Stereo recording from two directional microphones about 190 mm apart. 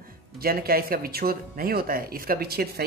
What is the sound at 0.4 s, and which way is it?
A woman's voice, 50° right (ahead or behind).